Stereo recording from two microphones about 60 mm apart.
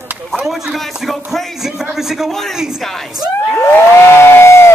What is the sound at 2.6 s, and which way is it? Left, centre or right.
Speech, centre.